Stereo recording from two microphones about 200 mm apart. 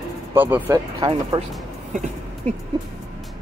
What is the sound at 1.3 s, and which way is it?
Speech, 25° right (ahead or behind).